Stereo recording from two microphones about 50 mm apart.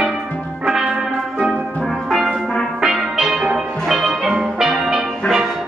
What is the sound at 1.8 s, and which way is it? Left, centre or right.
Music, centre.